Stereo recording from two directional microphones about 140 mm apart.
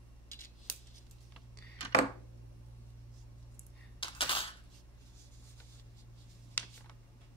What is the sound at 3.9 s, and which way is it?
Cutlery, 40° left (ahead or behind).